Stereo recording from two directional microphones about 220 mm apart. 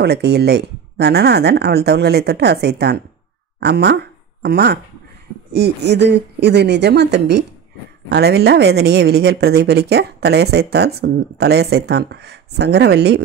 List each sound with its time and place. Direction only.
0.0 s a woman's voice: 50° right (ahead or behind)